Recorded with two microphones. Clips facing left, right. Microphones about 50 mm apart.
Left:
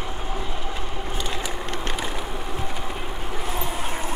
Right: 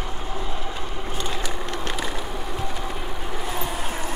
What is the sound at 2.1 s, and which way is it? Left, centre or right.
Vehicle, centre.